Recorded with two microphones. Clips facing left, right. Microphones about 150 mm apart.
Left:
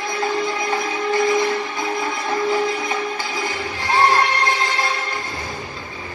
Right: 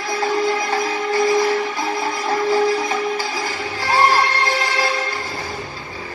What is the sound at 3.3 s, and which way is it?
Music, 20° left (ahead or behind).